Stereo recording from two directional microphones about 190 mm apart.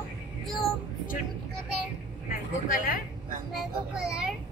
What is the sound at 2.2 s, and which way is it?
Vehicle, 50° left (ahead or behind).